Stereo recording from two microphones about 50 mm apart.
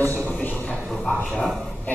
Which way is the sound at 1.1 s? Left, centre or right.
Left.